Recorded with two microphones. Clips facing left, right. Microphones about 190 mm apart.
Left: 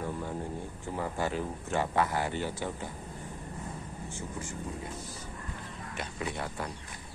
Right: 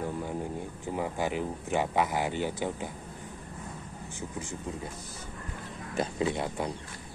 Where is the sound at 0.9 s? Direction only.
15° right (ahead or behind).